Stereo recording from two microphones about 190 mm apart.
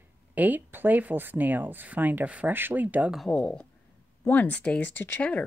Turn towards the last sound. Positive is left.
turn(degrees=10)  # may be behind; listen again after turning